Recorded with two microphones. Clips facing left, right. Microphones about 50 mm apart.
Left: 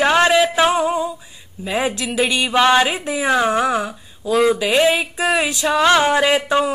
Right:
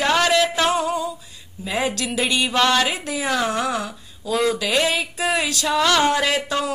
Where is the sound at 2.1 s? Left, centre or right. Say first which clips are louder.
Left 3 dB; centre.